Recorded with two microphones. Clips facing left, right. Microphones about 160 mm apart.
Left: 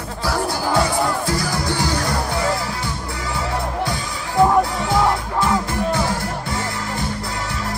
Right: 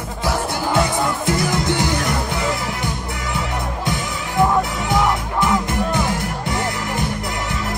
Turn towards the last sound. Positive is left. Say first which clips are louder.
# right 2 dB
turn(degrees=-20)  # may be behind; listen again after turning